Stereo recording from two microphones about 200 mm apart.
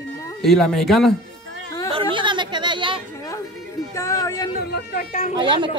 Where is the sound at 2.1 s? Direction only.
25° right (ahead or behind).